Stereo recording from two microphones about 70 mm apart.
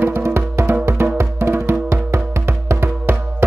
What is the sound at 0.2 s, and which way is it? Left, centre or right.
Music, right.